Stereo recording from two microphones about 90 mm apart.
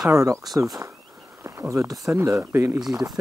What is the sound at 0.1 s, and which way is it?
Speech, 35° right (ahead or behind).